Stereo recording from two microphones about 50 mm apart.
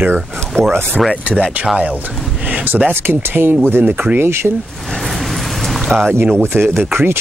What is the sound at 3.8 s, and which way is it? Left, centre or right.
Speech, right.